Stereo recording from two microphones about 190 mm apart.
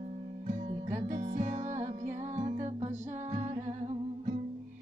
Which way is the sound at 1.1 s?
35° right (ahead or behind).